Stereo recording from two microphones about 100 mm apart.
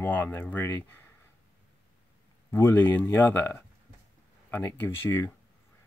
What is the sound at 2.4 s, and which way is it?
Speech, 30° left (ahead or behind).